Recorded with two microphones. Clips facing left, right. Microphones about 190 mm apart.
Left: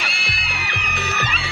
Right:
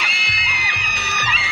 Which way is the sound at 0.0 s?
55° left (ahead or behind).